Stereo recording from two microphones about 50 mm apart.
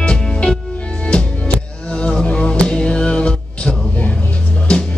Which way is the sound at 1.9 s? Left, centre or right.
Left.